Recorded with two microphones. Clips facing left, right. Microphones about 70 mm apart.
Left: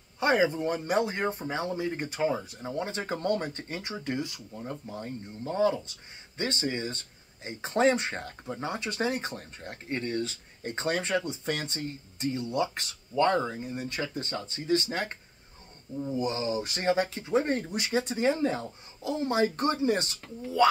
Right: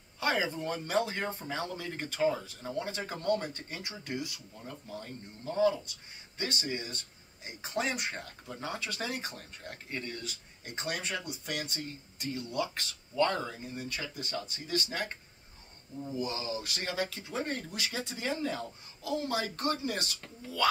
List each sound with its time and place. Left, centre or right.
0.2 s speech: left
16.2 s speech: left